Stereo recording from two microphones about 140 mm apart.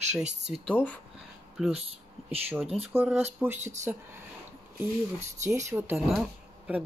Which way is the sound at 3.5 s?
55° right (ahead or behind).